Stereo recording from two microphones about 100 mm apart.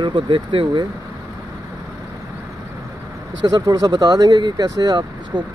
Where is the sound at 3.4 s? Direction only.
40° right (ahead or behind).